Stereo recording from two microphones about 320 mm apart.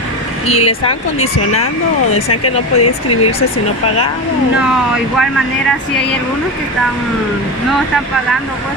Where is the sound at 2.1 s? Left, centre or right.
Left.